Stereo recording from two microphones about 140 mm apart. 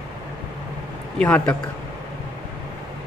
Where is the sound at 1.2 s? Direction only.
10° left (ahead or behind).